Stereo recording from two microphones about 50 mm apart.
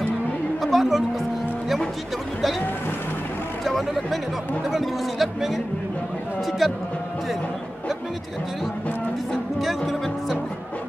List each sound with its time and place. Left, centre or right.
0.6 s music: centre
3.6 s speech: centre
6.6 s speech: centre
9.6 s speech: centre